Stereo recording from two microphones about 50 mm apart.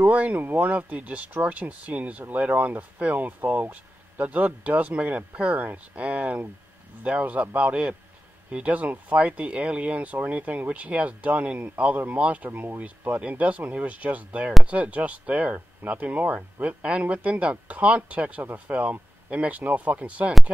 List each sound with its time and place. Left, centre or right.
0.1 s speech: right